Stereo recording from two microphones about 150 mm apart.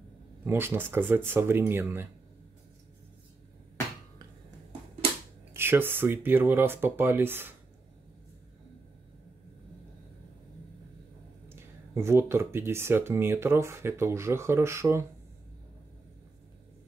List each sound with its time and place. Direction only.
0.5 s speech: 15° right (ahead or behind)
5.5 s speech: 15° right (ahead or behind)
11.4 s speech: 15° right (ahead or behind)